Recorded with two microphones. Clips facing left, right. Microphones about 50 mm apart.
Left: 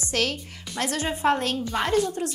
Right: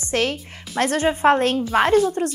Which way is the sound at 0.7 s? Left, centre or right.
Right.